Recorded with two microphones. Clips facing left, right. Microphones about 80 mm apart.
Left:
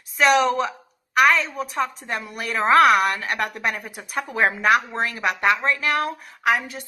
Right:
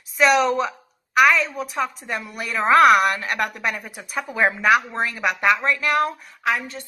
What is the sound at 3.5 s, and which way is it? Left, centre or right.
A woman's voice, centre.